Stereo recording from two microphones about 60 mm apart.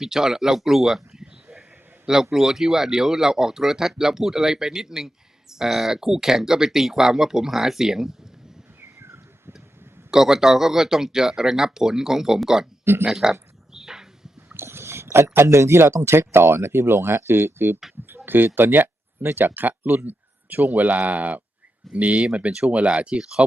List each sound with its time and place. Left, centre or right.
0.0 s speech: centre
8.8 s bird: right
10.1 s speech: centre
13.0 s a sound: centre
14.5 s speech: right; by 23.4 s centre